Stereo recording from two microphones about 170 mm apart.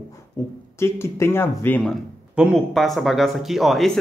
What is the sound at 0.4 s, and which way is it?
Speech, 15° left (ahead or behind).